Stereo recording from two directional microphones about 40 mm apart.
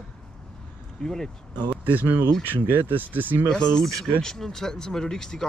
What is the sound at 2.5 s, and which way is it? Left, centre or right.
Speech, right.